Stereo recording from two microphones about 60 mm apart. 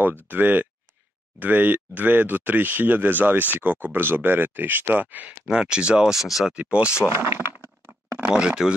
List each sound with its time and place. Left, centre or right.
0.0 s speech: right
5.5 s speech: centre
6.1 s speech: centre
6.5 s speech: centre
7.1 s crack: right
8.3 s speech: centre